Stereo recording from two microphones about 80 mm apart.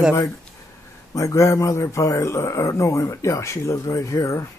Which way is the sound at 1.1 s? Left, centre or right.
Left.